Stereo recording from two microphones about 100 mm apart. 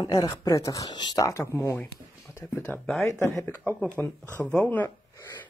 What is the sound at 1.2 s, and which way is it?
Speech, 30° left (ahead or behind).